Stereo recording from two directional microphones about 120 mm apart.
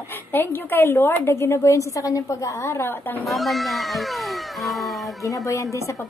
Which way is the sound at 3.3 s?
Centre (ahead or behind).